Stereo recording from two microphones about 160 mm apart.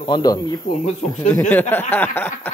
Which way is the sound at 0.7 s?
45° left (ahead or behind).